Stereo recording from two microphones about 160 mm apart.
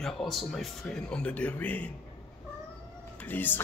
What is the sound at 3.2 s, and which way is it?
Speech, 10° left (ahead or behind).